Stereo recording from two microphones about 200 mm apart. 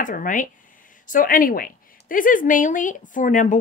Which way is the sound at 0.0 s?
40° left (ahead or behind).